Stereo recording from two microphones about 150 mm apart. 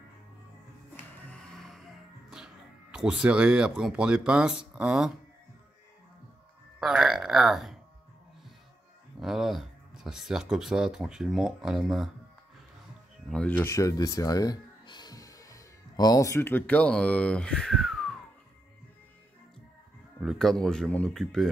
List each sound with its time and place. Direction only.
1.2 s music: 5° left (ahead or behind)
6.8 s music: 5° right (ahead or behind)
9.2 s speech: centre (ahead or behind)
13.3 s speech: 10° left (ahead or behind)
20.2 s speech: centre (ahead or behind)